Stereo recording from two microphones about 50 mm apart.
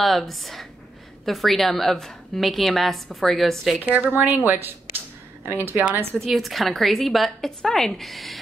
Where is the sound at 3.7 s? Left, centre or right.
Right.